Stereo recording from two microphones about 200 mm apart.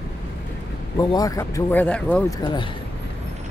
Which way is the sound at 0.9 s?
20° left (ahead or behind).